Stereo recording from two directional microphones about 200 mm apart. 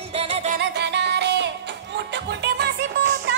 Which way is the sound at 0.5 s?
55° right (ahead or behind).